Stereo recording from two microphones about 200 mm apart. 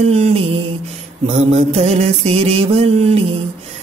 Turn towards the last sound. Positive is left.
turn(degrees=-30)  # may be behind; listen again after turning